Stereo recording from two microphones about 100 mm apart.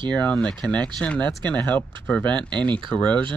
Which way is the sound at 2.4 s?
50° right (ahead or behind).